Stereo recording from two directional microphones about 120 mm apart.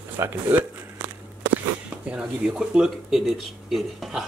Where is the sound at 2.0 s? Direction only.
5° right (ahead or behind).